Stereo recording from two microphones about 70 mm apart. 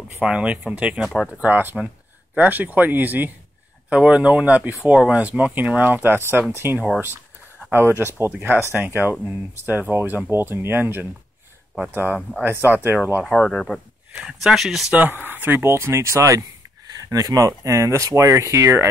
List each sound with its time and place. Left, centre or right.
0.2 s speech: centre; by 6.8 s right
8.0 s speech: right
13.3 s speech: centre
14.2 s speech: centre
14.9 s speech: right